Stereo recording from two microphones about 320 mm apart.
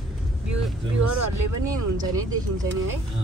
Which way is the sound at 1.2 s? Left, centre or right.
Right.